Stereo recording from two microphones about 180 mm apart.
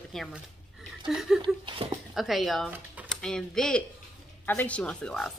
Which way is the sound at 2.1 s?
Centre (ahead or behind).